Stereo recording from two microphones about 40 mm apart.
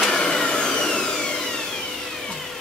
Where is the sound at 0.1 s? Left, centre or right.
Centre.